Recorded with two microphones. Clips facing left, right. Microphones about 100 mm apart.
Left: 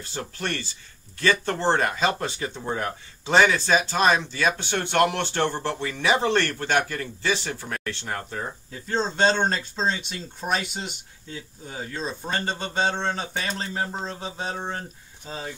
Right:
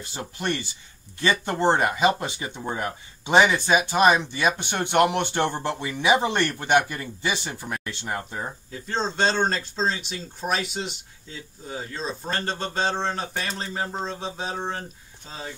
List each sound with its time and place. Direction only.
0.0 s speech: 15° right (ahead or behind)
8.7 s speech: 5° left (ahead or behind)